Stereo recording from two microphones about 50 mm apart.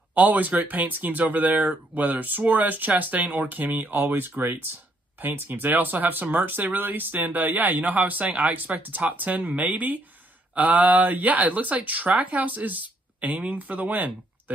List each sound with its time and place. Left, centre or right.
0.1 s speech: right